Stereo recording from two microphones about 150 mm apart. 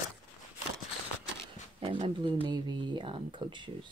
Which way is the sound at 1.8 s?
35° right (ahead or behind).